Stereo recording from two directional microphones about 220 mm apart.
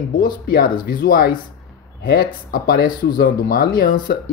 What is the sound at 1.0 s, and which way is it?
Speech, 45° left (ahead or behind).